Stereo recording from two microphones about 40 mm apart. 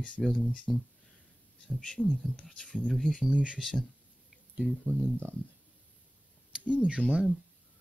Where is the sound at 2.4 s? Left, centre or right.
Left.